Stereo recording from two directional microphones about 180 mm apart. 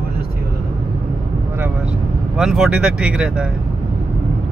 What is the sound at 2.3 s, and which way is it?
Speech, 5° right (ahead or behind).